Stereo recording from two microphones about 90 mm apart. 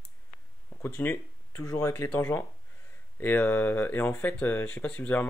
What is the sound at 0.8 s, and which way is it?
Speech, 25° left (ahead or behind).